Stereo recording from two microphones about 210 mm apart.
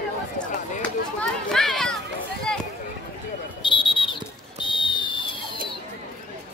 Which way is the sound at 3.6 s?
25° left (ahead or behind).